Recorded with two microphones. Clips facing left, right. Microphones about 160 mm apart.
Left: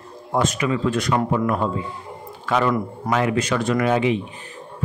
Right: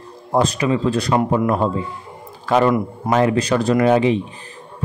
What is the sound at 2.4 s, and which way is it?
A man's voice, 35° right (ahead or behind).